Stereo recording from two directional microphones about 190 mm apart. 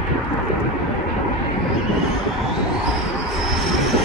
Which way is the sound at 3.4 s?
Centre (ahead or behind).